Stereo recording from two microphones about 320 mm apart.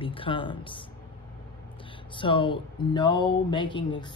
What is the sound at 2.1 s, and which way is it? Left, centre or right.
Speech, centre.